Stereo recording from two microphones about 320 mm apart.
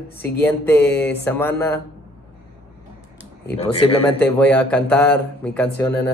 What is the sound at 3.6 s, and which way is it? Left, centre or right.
Mantra, centre.